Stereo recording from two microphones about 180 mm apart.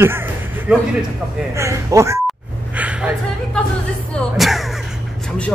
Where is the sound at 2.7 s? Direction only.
5° right (ahead or behind).